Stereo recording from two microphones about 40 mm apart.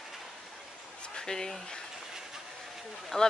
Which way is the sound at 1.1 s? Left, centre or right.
Centre.